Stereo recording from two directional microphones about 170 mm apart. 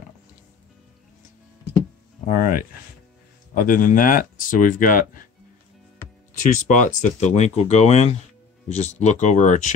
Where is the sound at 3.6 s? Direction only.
55° left (ahead or behind).